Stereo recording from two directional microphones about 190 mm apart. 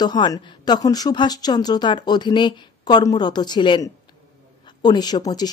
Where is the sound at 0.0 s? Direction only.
20° left (ahead or behind).